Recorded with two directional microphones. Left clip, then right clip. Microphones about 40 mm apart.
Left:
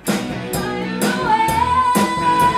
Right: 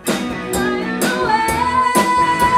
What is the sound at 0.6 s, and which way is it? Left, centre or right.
Music, right.